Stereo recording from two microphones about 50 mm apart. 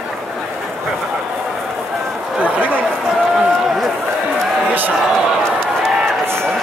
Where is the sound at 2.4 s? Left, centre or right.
Right.